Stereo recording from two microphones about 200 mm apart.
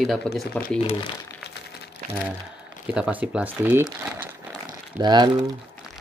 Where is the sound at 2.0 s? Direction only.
45° right (ahead or behind).